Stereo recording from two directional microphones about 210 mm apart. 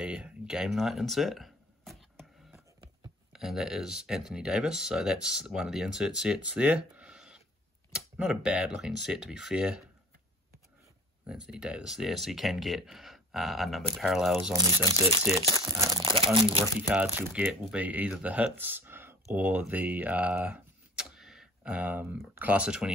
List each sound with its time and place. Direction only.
0.0 s a sound: 5° right (ahead or behind)
3.3 s speech: centre (ahead or behind)
11.2 s speech: 5° right (ahead or behind)
14.8 s speech: 15° left (ahead or behind)
15.5 s crumpling: 15° right (ahead or behind)
16.3 s speech: 25° right (ahead or behind)
16.9 s speech: 10° right (ahead or behind)